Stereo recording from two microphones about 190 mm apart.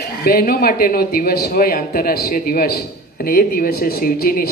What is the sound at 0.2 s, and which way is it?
A man's voice, 55° left (ahead or behind).